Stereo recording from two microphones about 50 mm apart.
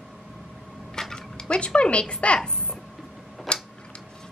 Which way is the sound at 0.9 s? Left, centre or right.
Centre.